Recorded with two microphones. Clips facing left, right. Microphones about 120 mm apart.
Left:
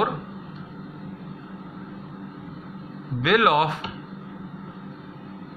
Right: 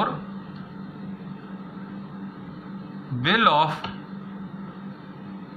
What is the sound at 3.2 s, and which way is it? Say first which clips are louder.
Speech: left 1 dB; 15° right (ahead or behind).